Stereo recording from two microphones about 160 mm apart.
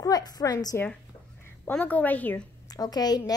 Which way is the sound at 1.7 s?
10° left (ahead or behind).